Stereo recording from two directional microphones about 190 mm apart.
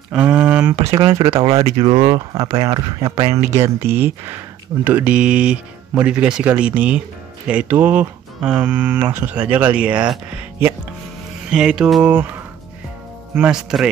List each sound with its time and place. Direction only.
0.1 s a sound: 5° right (ahead or behind)
0.9 s speech: 25° right (ahead or behind)
2.1 s speech: 20° right (ahead or behind)
11.5 s music: 5° right (ahead or behind)
13.3 s music: 5° right (ahead or behind)